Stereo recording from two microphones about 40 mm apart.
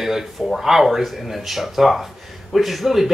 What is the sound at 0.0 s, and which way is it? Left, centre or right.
Speech, centre.